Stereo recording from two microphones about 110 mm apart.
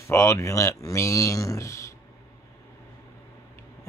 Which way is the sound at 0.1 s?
25° left (ahead or behind).